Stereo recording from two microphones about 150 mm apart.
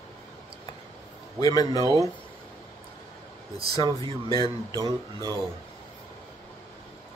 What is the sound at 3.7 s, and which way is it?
Speech, 25° left (ahead or behind).